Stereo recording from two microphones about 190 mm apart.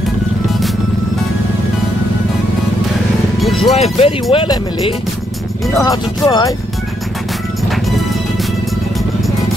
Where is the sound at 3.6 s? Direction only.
30° left (ahead or behind).